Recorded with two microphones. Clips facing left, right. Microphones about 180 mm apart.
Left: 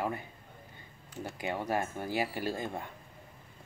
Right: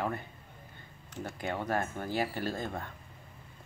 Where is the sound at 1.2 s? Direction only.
10° left (ahead or behind).